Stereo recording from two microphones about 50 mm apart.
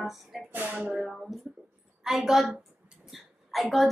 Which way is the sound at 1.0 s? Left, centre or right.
Centre.